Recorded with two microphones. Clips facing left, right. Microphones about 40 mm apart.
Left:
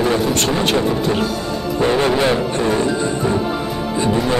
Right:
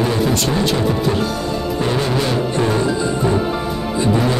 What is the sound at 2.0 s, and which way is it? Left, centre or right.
Speech, left.